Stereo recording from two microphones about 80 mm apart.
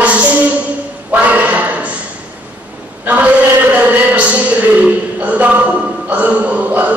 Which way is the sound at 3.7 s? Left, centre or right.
Centre.